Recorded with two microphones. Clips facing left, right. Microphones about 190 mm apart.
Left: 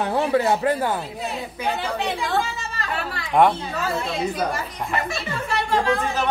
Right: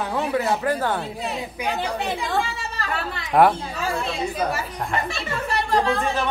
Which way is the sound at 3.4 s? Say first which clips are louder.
Even; 5° right (ahead or behind).